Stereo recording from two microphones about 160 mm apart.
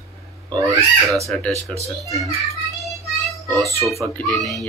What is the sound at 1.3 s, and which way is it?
Speech, 5° left (ahead or behind).